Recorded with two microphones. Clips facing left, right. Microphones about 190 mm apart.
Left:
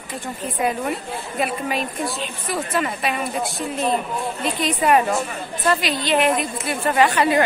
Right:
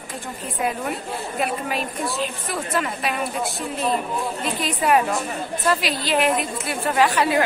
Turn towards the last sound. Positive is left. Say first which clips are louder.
# left 2 dB
turn(degrees=0)  # may be behind; listen again after turning